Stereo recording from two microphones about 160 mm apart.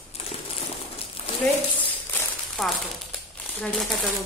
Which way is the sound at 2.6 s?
Centre (ahead or behind).